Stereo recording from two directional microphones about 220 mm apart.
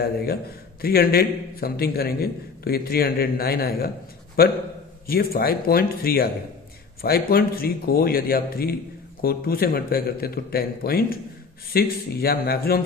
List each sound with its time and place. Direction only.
0.0 s a man's voice: 45° left (ahead or behind)